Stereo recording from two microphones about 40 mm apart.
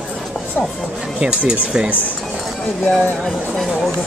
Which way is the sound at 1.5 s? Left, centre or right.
Right.